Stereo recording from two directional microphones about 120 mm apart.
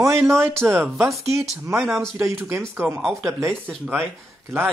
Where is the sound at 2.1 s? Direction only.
20° right (ahead or behind).